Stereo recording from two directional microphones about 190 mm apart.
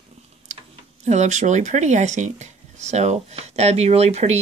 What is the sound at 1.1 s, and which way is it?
Speech, 40° right (ahead or behind).